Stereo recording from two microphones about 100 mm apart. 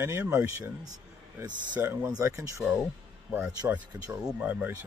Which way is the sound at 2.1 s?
35° right (ahead or behind).